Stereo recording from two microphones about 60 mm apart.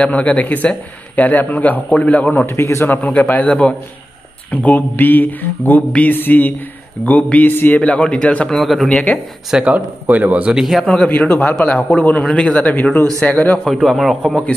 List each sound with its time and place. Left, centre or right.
0.0 s speech: left
2.4 s a man's voice: left
3.1 s speech: left
7.8 s speech: left
8.5 s a man's voice: centre
8.8 s a man's voice: centre
9.5 s speech: centre
9.8 s speech: right
10.5 s a man's voice: centre
11.1 s a man's voice: left
13.8 s a man's voice: centre